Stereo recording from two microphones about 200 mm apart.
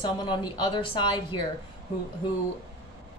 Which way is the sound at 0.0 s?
20° left (ahead or behind).